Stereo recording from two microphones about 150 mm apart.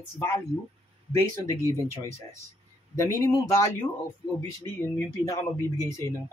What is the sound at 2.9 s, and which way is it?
Speech, 20° left (ahead or behind).